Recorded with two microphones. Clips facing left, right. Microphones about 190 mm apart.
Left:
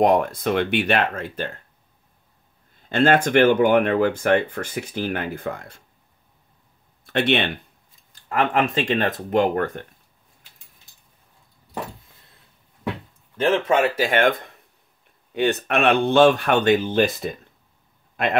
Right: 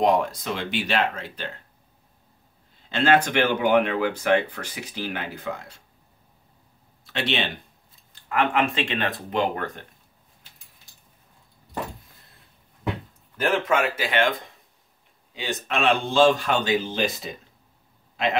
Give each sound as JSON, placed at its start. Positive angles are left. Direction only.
{"t": 0.0, "sound": "speech", "side_deg": 55}
{"t": 2.9, "sound": "speech", "side_deg": 50}
{"t": 7.1, "sound": "speech", "side_deg": 55}
{"t": 8.1, "sound": "speech", "side_deg": 40}
{"t": 13.4, "sound": "speech", "side_deg": 30}
{"t": 18.1, "sound": "a sound", "side_deg": 55}